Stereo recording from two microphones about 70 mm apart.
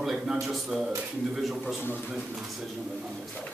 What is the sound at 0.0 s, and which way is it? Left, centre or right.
A man's voice, centre.